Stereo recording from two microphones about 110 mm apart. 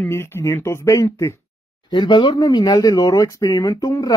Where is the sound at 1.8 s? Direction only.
45° left (ahead or behind).